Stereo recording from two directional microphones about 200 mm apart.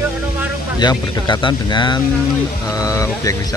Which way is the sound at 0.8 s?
20° left (ahead or behind).